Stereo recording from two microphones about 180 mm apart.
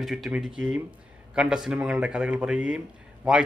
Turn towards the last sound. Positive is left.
turn(degrees=-5)  # may be behind; listen again after turning